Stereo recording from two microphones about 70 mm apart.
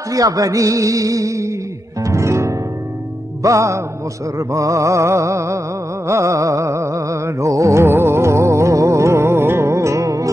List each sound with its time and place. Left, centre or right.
0.1 s music: right
7.8 s music: right